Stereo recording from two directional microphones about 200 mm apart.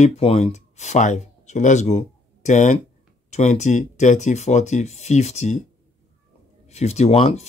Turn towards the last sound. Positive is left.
turn(degrees=30)  # may be behind; listen again after turning